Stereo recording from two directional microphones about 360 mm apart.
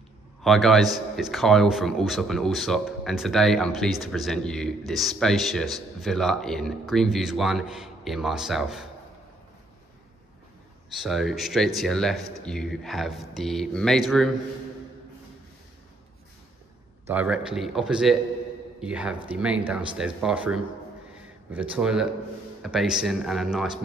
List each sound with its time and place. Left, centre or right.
0.4 s speech: centre
10.9 s speech: centre
17.1 s speech: centre